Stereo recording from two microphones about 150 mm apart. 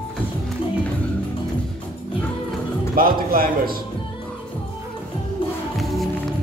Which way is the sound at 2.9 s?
75° right (ahead or behind).